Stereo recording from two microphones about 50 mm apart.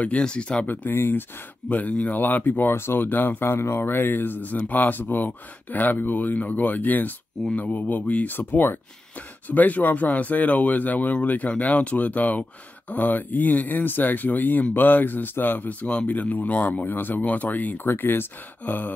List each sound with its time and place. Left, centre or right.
0.2 s speech: left
0.9 s speech: left
1.7 s speech: left
2.7 s speech: left
3.4 s speech: left
15.8 s speech: centre
16.1 s speech: left